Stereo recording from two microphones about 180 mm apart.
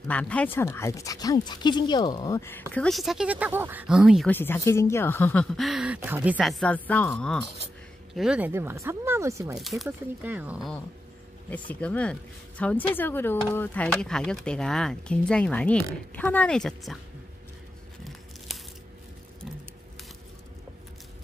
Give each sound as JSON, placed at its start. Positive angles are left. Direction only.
{"t": 0.1, "sound": "speech", "side_deg": 5}
{"t": 2.7, "sound": "speech", "side_deg": 5}
{"t": 4.3, "sound": "speech", "side_deg": 10}
{"t": 9.6, "sound": "speech", "side_deg": 0}
{"t": 11.7, "sound": "speech", "side_deg": 10}